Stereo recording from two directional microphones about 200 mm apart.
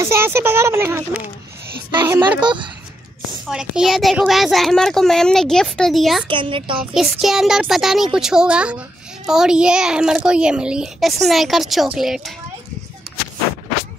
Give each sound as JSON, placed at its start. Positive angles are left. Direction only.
{"t": 0.0, "sound": "speech", "side_deg": -15}
{"t": 3.4, "sound": "speech", "side_deg": 0}
{"t": 6.2, "sound": "a woman's voice", "side_deg": -25}
{"t": 6.8, "sound": "speech", "side_deg": -5}